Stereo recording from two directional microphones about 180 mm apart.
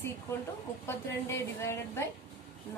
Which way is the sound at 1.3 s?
15° left (ahead or behind).